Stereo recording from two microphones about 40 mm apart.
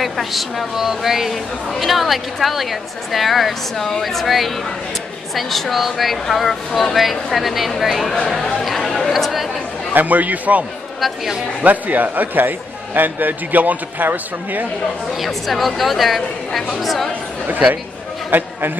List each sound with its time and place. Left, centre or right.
0.0 s speech: centre
8.5 s chatter: centre
9.1 s chatter: centre
9.9 s a man's voice: right
11.0 s speech: centre
11.6 s a man's voice: right
15.1 s speech: centre
17.5 s speech: right
18.3 s a man's voice: right